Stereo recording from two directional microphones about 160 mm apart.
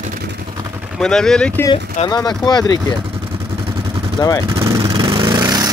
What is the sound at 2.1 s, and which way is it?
Speech, 25° left (ahead or behind).